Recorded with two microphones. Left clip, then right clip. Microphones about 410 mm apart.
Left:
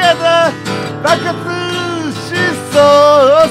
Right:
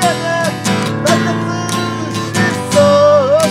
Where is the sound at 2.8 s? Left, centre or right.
Left.